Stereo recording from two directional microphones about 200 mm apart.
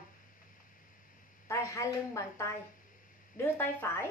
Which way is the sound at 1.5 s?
15° left (ahead or behind).